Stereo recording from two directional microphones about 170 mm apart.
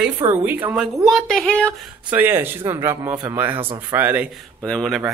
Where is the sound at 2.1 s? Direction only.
10° right (ahead or behind).